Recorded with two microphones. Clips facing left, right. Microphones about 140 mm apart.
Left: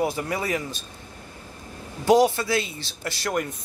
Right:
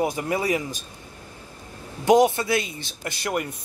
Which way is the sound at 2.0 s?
20° right (ahead or behind).